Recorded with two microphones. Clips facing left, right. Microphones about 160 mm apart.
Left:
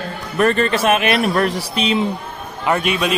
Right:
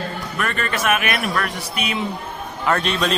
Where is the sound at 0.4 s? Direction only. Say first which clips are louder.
Left 9 dB; 35° left (ahead or behind).